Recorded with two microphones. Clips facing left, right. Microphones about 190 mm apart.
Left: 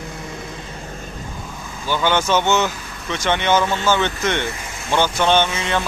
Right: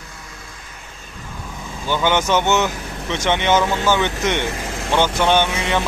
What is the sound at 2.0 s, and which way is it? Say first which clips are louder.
Speech: even; 15° right (ahead or behind).